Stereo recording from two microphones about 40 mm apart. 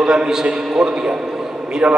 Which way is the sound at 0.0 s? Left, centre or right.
Centre.